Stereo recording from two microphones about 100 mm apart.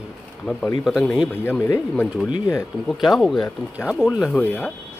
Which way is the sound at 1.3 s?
20° left (ahead or behind).